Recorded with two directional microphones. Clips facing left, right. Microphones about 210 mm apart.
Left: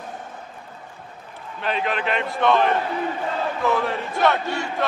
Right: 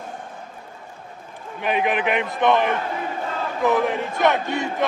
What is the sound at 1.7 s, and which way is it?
Speech, 15° right (ahead or behind).